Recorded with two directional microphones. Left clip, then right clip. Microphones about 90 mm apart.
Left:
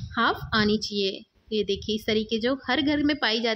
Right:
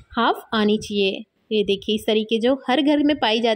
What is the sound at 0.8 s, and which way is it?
Speech, 40° right (ahead or behind).